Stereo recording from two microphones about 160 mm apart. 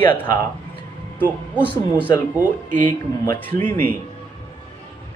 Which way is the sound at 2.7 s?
55° right (ahead or behind).